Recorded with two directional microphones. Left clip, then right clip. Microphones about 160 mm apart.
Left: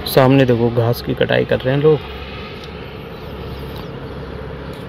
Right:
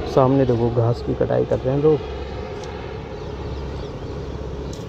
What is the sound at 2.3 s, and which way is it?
Vehicle, 90° right.